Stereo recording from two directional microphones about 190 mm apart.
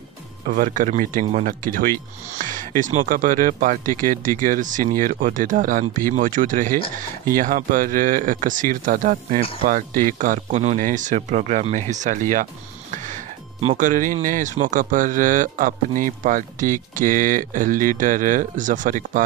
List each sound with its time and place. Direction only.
0.5 s speech: 45° right (ahead or behind)